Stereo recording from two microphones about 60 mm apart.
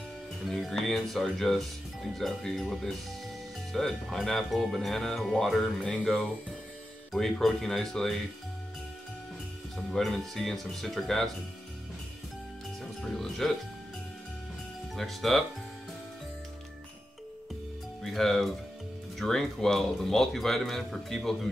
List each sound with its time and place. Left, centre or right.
0.5 s a man's voice: centre
5.8 s speech: centre
7.1 s speech: centre
9.8 s a man's voice: centre
13.0 s speech: centre
15.0 s a man's voice: centre
18.0 s a man's voice: centre